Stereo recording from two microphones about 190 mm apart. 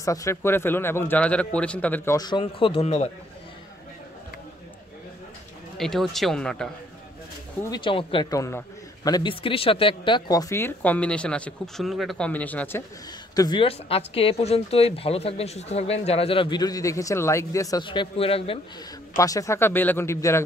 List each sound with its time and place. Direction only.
0.0 s a man's voice: 15° left (ahead or behind)
2.1 s speech: 25° left (ahead or behind)
5.8 s a man's voice: centre (ahead or behind)
7.7 s a man's voice: 25° left (ahead or behind); by 12.8 s 10° left (ahead or behind)
13.4 s speech: 25° left (ahead or behind)
19.1 s a man's voice: 15° left (ahead or behind)